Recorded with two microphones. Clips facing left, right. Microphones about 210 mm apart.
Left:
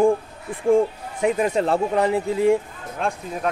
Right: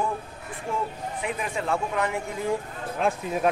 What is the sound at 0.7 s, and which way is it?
Speech, 45° left (ahead or behind).